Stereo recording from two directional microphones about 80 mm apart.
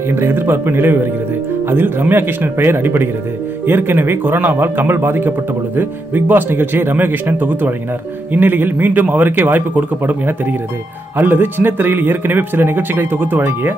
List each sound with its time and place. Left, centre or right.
0.1 s speech: right